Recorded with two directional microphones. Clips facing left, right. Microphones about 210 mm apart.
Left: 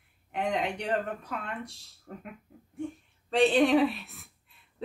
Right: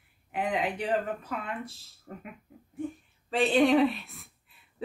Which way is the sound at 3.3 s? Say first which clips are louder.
Even; centre (ahead or behind).